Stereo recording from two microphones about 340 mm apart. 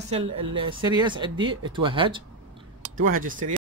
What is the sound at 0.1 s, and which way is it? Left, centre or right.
Speech, centre.